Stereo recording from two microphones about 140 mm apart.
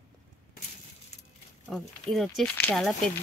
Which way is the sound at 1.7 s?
Centre (ahead or behind).